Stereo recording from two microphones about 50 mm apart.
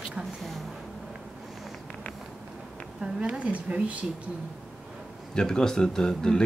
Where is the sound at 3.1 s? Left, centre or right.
Right.